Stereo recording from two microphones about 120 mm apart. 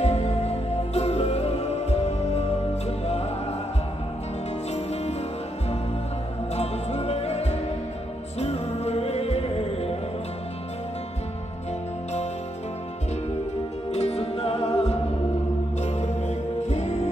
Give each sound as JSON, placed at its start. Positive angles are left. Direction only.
{"t": 0.0, "sound": "music", "side_deg": 65}
{"t": 6.5, "sound": "music", "side_deg": 65}
{"t": 13.9, "sound": "music", "side_deg": 60}